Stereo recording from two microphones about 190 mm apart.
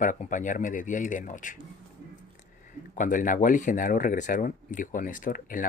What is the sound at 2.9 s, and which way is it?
Speech, 45° left (ahead or behind).